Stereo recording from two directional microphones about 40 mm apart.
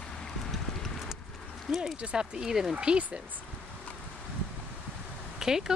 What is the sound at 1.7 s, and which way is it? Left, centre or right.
Speech, centre.